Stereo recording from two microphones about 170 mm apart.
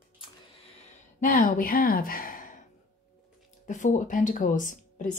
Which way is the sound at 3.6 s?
45° left (ahead or behind).